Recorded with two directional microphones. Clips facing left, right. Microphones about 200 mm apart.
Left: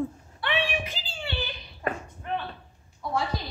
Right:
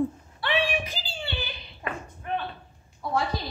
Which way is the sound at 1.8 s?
40° left (ahead or behind).